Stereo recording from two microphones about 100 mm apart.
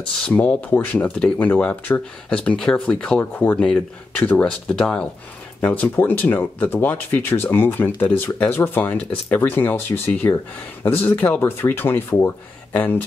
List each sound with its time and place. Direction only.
0.2 s speech: 15° left (ahead or behind)